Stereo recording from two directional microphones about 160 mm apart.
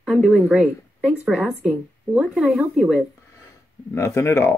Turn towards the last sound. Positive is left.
turn(degrees=15)  # may be behind; listen again after turning